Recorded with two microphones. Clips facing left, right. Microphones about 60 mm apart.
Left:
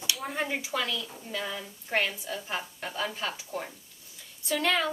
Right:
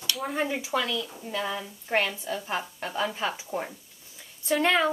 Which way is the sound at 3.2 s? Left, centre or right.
Right.